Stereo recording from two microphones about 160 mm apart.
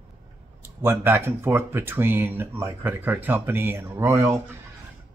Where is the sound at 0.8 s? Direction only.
15° right (ahead or behind).